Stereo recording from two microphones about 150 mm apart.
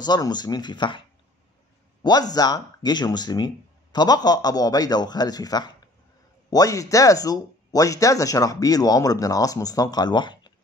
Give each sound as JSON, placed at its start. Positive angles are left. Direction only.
{"t": 0.0, "sound": "speech", "side_deg": 30}
{"t": 2.0, "sound": "speech", "side_deg": 25}